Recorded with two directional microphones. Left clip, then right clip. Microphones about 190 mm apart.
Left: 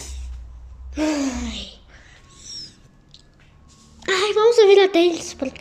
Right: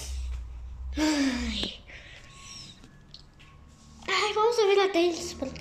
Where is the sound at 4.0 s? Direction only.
20° left (ahead or behind).